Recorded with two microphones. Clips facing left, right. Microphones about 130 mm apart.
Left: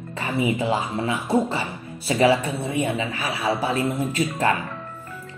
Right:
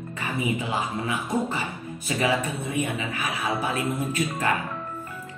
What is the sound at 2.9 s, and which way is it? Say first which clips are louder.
Speech: left 3 dB; 30° left (ahead or behind).